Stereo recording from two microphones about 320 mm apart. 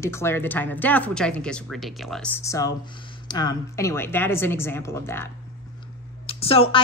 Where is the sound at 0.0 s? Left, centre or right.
Centre.